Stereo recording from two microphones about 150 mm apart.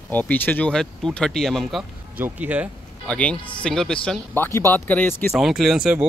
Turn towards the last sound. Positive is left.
turn(degrees=-5)  # may be behind; listen again after turning